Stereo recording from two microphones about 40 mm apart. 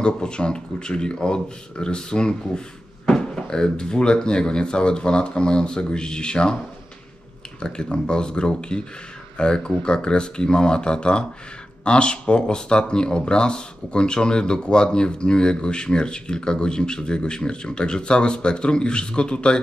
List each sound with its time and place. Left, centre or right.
0.0 s speech: left
7.6 s speech: left